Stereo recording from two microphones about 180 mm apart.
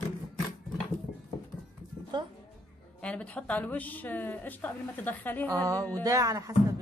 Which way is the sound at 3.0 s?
5° left (ahead or behind).